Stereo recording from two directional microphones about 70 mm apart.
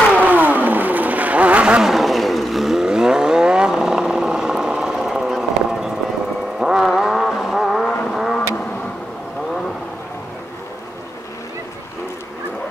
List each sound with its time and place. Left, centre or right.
0.2 s vehicle: right
1.8 s vehicle: centre